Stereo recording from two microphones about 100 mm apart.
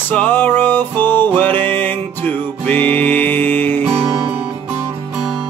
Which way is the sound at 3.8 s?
60° right (ahead or behind).